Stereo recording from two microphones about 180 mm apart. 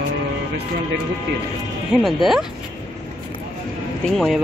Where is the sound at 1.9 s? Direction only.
Centre (ahead or behind).